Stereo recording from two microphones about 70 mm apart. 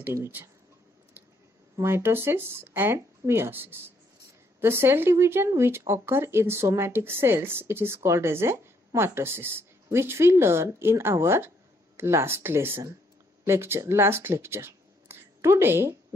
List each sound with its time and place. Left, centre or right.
1.8 s a woman's voice: right